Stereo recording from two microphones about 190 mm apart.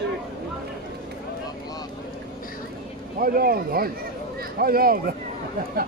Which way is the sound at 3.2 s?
50° right (ahead or behind).